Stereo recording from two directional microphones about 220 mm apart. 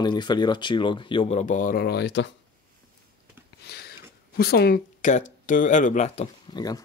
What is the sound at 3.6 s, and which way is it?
Speech, 45° left (ahead or behind).